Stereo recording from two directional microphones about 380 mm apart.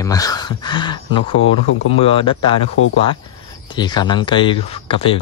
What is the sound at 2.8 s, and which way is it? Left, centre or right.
Speech, left.